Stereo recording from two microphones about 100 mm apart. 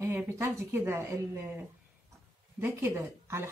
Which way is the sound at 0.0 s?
25° right (ahead or behind).